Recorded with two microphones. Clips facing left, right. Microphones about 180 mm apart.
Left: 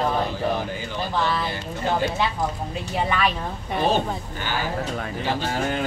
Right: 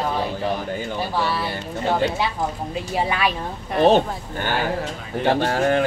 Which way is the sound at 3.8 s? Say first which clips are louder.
Right 7 dB; 60° right (ahead or behind).